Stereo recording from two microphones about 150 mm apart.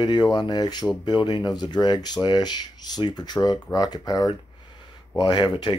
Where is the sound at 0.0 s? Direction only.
30° left (ahead or behind).